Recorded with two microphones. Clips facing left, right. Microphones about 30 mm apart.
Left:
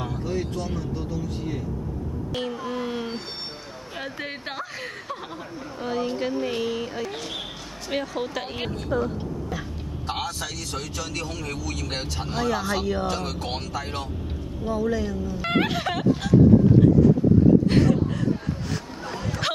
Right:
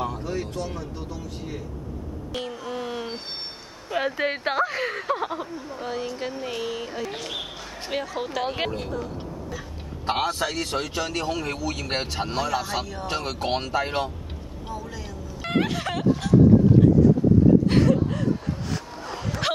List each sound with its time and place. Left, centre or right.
0.0 s speech: centre
3.9 s a man's voice: right
5.8 s speech: centre
8.5 s a man's voice: right
10.0 s a man's voice: right
14.8 s speech: centre
15.4 s a sound: centre
17.6 s a sound: centre
19.0 s a sound: centre